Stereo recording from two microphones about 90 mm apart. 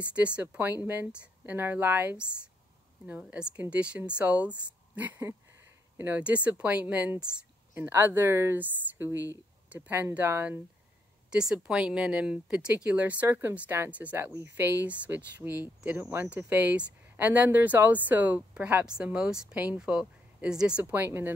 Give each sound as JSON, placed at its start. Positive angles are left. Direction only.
{"t": 0.0, "sound": "speech", "side_deg": -15}
{"t": 11.2, "sound": "speech", "side_deg": -10}